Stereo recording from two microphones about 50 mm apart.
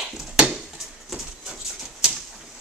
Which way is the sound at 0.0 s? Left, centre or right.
Centre.